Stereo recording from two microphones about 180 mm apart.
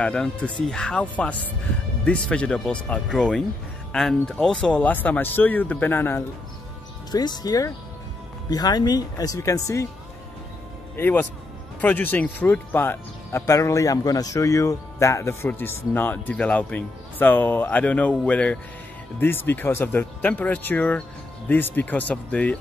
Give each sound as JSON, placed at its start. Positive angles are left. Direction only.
{"t": 0.0, "sound": "speech", "side_deg": 5}
{"t": 11.0, "sound": "speech", "side_deg": 10}